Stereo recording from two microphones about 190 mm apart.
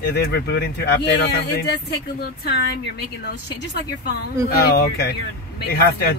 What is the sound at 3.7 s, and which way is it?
Speech, 55° left (ahead or behind).